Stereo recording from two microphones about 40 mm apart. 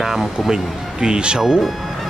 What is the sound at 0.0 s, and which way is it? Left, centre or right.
Speech, centre.